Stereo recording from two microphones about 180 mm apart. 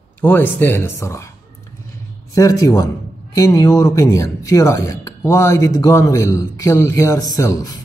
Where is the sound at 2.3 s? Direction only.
15° left (ahead or behind).